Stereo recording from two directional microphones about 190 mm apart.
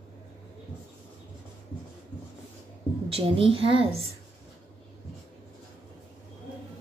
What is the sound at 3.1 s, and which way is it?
Speech, 30° right (ahead or behind).